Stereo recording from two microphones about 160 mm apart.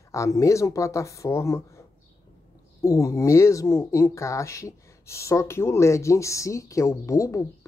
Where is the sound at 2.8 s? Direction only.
20° left (ahead or behind).